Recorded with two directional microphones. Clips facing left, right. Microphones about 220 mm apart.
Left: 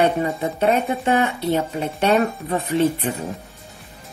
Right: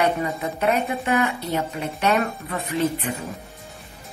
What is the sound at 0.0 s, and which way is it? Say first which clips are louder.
Speech: left 3 dB; 30° left (ahead or behind).